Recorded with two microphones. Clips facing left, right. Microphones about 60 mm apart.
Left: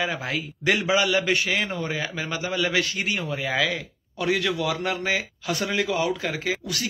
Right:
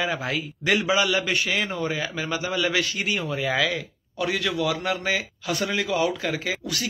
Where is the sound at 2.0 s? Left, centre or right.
Left.